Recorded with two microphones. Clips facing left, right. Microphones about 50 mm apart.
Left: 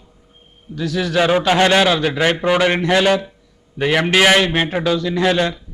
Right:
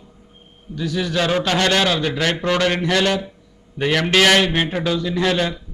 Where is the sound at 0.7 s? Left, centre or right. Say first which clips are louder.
Left 2 dB; centre.